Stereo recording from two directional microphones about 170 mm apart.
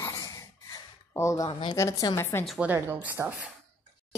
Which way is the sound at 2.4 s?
5° right (ahead or behind).